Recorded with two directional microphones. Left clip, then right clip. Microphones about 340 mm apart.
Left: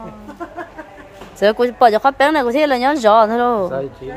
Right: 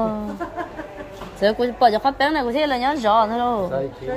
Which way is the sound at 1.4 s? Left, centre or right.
Centre.